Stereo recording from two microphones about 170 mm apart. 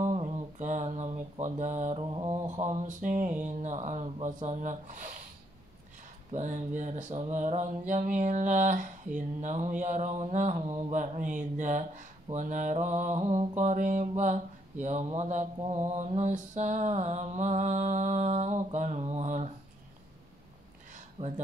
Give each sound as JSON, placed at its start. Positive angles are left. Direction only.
{"t": 0.0, "sound": "mantra", "side_deg": -40}
{"t": 2.0, "sound": "mantra", "side_deg": -30}
{"t": 2.6, "sound": "speech", "side_deg": -45}
{"t": 6.3, "sound": "speech", "side_deg": -45}
{"t": 21.2, "sound": "speech", "side_deg": -40}